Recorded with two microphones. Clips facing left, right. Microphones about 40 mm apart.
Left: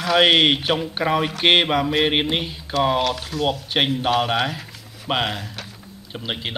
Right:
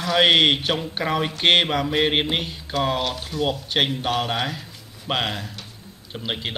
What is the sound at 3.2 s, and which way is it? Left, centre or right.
Speech, left.